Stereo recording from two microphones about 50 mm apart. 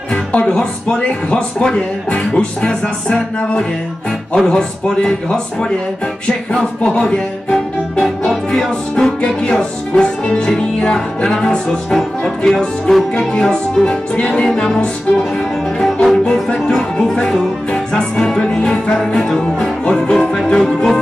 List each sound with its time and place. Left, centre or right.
0.1 s music: left
0.5 s music: centre
0.9 s speech: centre
2.0 s music: left
13.8 s music: centre